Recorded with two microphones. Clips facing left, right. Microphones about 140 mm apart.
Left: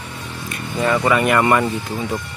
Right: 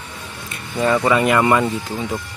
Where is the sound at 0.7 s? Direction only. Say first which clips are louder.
Right 1 dB; 10° right (ahead or behind).